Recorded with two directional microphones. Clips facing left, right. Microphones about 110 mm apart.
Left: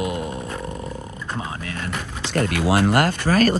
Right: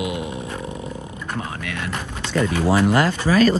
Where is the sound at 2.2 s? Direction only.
75° left (ahead or behind).